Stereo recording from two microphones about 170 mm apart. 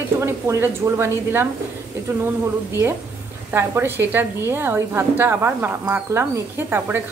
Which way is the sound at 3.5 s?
15° right (ahead or behind).